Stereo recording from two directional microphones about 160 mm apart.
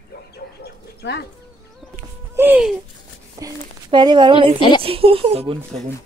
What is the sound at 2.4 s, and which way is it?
Speech, 5° right (ahead or behind).